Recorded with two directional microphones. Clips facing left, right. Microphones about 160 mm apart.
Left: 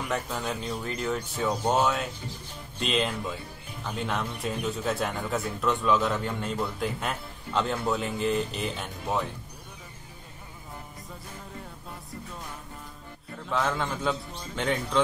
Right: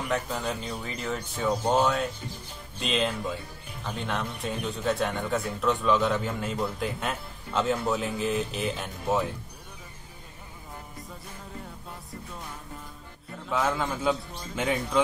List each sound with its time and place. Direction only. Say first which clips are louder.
0.1 s speech: right 2 dB; centre (ahead or behind)
13.5 s speech: right 1 dB; 5° right (ahead or behind)